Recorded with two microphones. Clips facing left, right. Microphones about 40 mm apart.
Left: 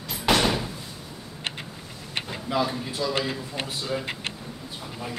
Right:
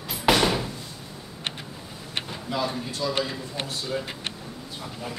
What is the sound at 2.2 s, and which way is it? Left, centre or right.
A man's voice, centre.